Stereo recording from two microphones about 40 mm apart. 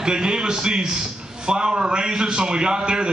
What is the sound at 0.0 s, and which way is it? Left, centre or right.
A man's voice, right.